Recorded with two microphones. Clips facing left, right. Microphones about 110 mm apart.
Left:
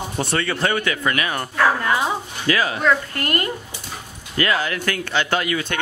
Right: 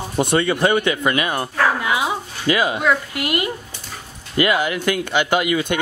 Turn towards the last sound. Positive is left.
turn(degrees=-15)  # may be behind; listen again after turning